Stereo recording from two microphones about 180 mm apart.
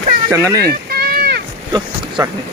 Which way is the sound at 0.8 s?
60° right (ahead or behind).